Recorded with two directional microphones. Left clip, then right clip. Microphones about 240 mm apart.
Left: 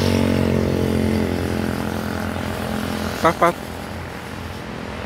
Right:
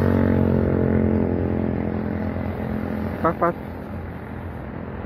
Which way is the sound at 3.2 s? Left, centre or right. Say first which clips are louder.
Left 5 dB; left.